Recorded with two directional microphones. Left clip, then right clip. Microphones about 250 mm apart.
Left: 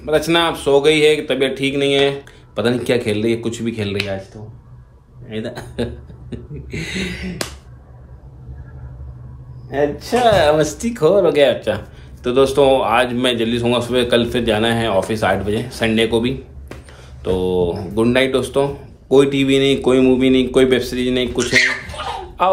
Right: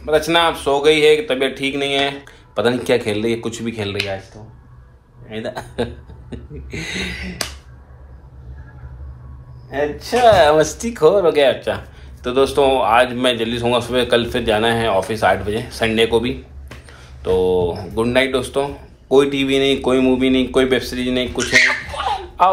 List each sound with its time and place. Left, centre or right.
0.0 s a man's voice: centre
5.3 s a man's voice: centre
9.7 s speech: centre
22.0 s music: centre